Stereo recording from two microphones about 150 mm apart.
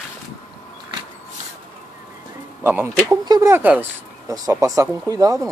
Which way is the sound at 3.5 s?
15° right (ahead or behind).